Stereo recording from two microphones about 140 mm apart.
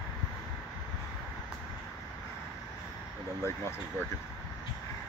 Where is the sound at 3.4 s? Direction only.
15° left (ahead or behind).